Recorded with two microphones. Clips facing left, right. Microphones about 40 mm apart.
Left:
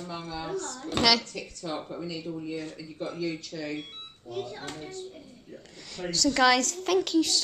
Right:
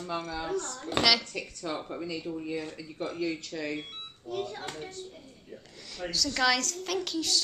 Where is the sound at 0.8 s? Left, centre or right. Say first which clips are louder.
Left 2 dB; centre.